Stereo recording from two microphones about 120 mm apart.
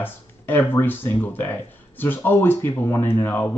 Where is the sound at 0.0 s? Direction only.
15° left (ahead or behind).